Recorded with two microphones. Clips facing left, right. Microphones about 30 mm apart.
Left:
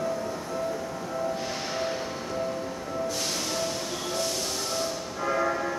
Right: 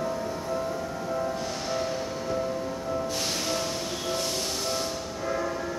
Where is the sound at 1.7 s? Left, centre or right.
Centre.